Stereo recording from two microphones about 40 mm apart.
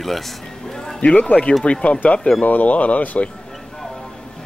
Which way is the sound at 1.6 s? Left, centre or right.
Left.